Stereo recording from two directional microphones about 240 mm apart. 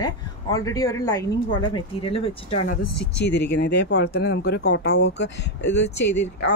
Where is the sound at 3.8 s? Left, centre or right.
Left.